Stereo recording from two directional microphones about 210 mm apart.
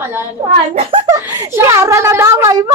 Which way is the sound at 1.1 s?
15° right (ahead or behind).